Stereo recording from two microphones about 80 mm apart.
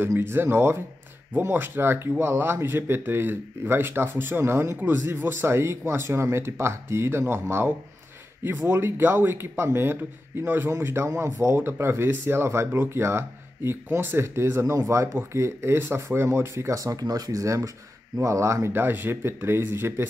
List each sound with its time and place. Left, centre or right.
0.0 s speech: right